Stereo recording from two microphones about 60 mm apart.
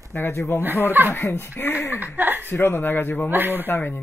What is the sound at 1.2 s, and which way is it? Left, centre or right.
Speech, left.